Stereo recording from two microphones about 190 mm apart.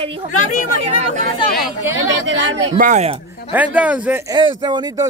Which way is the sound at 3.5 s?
5° right (ahead or behind).